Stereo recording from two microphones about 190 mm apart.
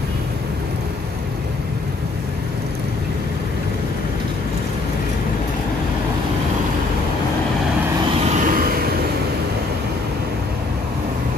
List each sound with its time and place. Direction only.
8.3 s vehicle: 45° right (ahead or behind)